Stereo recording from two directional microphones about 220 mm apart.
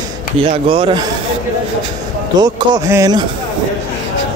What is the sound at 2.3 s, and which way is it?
Speech, 15° right (ahead or behind).